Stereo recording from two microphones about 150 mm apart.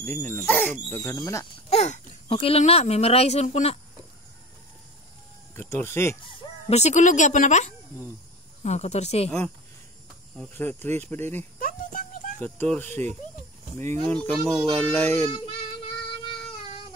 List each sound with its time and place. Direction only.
0.0 s speech: 15° left (ahead or behind)
1.7 s speech: 45° left (ahead or behind)
5.5 s speech: 15° left (ahead or behind)
6.2 s speech: 45° left (ahead or behind)
10.6 s speech: 15° left (ahead or behind)
11.6 s a sound: 65° left (ahead or behind)
12.4 s speech: 10° left (ahead or behind)
14.0 s speech: 10° left (ahead or behind)
14.4 s speech: centre (ahead or behind); by 15.2 s 15° left (ahead or behind)